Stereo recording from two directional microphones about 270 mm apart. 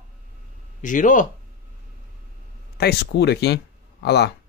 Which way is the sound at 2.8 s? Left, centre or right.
Left.